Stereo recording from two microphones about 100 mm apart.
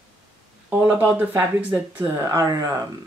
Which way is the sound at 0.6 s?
20° right (ahead or behind).